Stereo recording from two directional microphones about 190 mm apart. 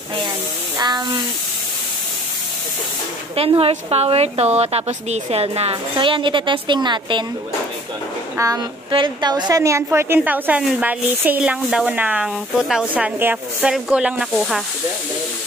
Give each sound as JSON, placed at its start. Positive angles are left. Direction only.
{"t": 0.7, "sound": "speech", "side_deg": -20}
{"t": 3.3, "sound": "a woman's voice", "side_deg": -30}
{"t": 8.4, "sound": "a woman's voice", "side_deg": -20}